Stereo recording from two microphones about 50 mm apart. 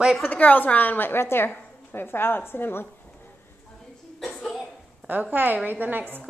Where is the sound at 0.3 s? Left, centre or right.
Left.